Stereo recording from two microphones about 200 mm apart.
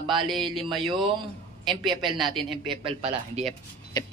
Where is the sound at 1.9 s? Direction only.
25° right (ahead or behind).